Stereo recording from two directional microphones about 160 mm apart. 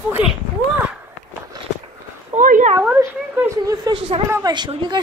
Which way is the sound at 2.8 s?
10° right (ahead or behind).